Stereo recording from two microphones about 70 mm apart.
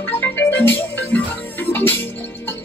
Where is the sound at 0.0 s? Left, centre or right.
Left.